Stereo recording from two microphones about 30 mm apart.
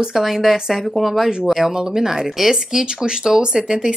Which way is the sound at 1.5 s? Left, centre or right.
Centre.